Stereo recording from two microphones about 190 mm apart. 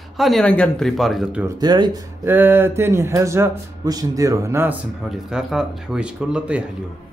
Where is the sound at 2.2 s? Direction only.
10° right (ahead or behind).